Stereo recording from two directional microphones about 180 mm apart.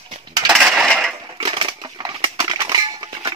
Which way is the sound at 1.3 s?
30° right (ahead or behind).